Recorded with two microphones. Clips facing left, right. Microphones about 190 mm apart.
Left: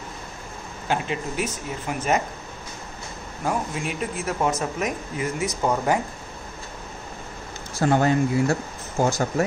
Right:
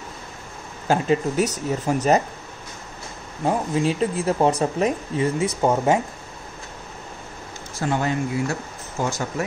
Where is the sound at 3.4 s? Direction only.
30° right (ahead or behind).